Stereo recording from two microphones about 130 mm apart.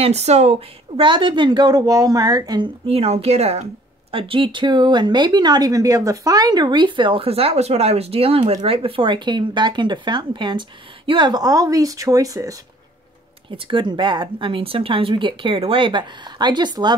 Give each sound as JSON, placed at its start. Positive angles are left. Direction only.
{"t": 0.0, "sound": "speech", "side_deg": -55}
{"t": 1.0, "sound": "speech", "side_deg": -40}
{"t": 2.9, "sound": "speech", "side_deg": -50}
{"t": 4.1, "sound": "speech", "side_deg": -45}
{"t": 13.5, "sound": "speech", "side_deg": -40}